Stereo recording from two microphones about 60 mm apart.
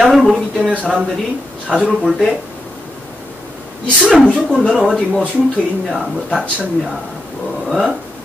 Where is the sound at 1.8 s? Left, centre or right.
Centre.